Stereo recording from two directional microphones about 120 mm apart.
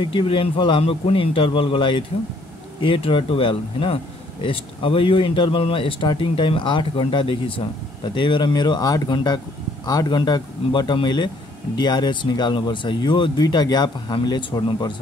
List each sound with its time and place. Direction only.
0.1 s speech: 45° left (ahead or behind)